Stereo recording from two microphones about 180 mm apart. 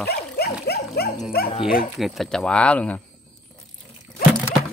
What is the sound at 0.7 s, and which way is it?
Dog, 65° left (ahead or behind).